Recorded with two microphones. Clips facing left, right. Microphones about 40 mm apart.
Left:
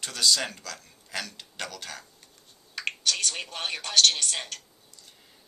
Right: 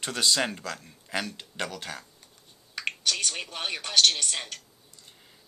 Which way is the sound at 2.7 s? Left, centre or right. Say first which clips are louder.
Even; centre.